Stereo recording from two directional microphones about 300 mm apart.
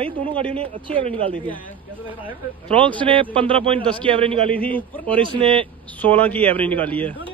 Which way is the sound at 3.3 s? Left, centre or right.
Centre.